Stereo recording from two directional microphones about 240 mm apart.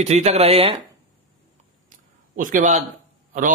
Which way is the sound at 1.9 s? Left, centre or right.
Right.